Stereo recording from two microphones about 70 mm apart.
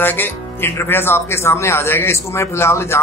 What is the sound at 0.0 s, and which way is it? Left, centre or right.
Speech, left.